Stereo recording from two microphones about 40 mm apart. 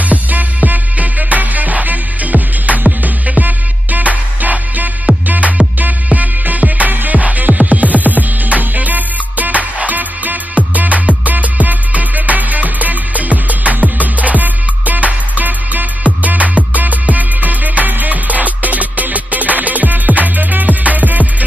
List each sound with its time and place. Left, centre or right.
0.1 s music: right
5.1 s music: right